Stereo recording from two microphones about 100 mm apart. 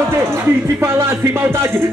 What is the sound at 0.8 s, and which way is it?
Speech, 25° right (ahead or behind).